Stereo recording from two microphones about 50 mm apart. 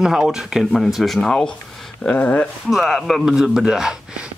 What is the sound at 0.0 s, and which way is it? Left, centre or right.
Speech, centre.